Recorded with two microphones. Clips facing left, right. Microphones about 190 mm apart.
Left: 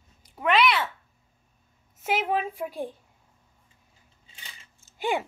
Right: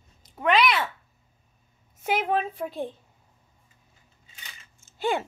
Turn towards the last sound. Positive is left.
turn(degrees=15)  # may be behind; listen again after turning